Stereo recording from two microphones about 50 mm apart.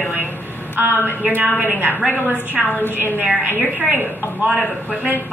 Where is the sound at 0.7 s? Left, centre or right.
Right.